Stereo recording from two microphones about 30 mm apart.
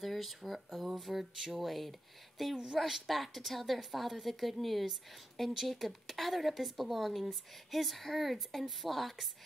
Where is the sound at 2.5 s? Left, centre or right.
Right.